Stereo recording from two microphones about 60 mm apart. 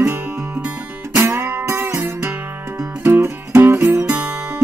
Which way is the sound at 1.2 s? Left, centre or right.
Right.